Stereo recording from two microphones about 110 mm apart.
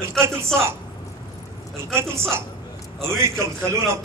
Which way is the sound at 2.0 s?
25° right (ahead or behind).